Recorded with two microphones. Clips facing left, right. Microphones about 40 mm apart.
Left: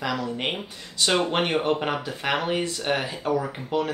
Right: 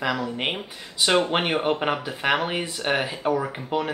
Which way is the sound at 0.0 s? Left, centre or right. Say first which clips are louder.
Right 2 dB; centre.